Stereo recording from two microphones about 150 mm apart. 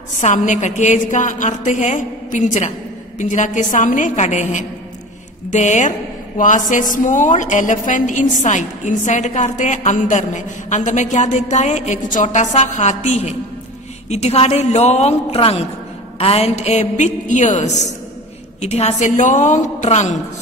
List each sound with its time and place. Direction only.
0.2 s a woman's voice: 55° left (ahead or behind)